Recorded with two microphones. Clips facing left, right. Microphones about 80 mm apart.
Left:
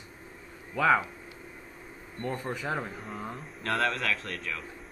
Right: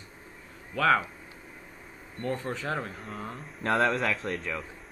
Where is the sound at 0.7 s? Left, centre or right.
Centre.